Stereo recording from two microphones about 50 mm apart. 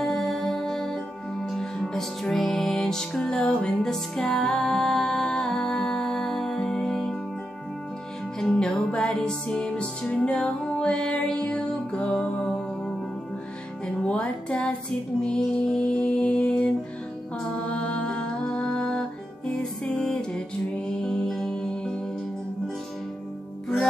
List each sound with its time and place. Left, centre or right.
0.0 s music: centre
8.4 s music: centre
17.6 s mantra: left
19.5 s music: centre